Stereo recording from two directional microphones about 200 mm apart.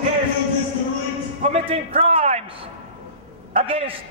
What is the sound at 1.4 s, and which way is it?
A man's voice, 30° right (ahead or behind).